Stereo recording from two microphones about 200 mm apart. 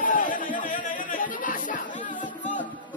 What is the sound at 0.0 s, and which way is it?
Music, 40° left (ahead or behind).